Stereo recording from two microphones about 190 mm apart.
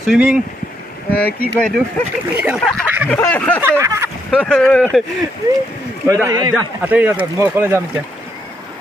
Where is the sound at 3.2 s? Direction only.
10° left (ahead or behind).